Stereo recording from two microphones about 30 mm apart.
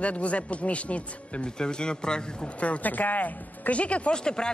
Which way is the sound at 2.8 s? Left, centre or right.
Left.